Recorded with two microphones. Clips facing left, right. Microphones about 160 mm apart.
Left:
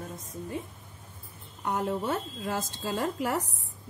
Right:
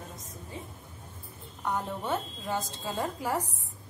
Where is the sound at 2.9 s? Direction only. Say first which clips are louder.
Left 2 dB; 75° left (ahead or behind).